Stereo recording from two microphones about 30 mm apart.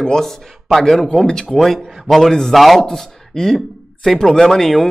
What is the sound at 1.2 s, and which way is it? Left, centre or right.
Speech, left.